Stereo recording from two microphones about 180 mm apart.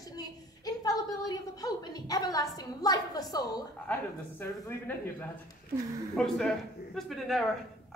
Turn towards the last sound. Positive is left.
turn(degrees=0)  # may be behind; listen again after turning